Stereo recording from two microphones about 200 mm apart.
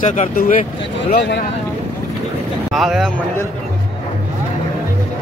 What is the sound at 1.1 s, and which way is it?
Speech, 55° left (ahead or behind).